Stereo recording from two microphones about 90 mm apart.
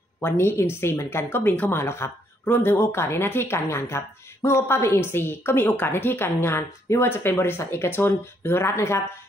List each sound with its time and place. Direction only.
0.2 s speech: 25° left (ahead or behind)